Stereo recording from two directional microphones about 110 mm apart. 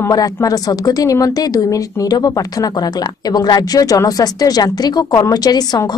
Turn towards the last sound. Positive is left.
turn(degrees=35)  # may be behind; listen again after turning